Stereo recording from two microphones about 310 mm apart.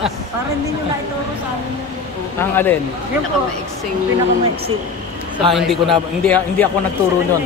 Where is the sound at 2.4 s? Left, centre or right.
Centre.